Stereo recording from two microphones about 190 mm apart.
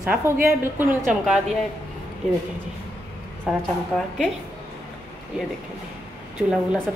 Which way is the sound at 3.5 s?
Centre (ahead or behind).